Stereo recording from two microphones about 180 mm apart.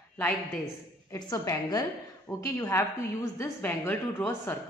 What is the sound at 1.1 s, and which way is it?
A woman's voice, 20° left (ahead or behind).